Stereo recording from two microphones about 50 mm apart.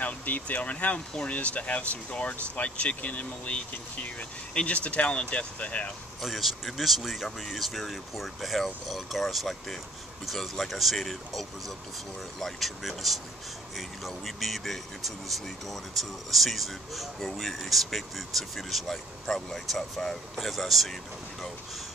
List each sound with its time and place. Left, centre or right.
0.0 s speech: left
6.2 s speech: centre